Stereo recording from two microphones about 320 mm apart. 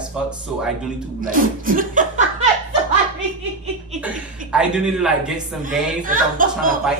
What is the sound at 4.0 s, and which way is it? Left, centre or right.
Speech, centre.